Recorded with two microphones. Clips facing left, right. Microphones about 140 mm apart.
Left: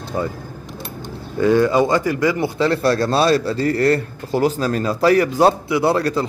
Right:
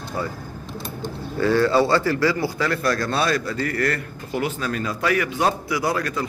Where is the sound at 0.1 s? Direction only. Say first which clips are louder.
Left 5 dB; 20° left (ahead or behind).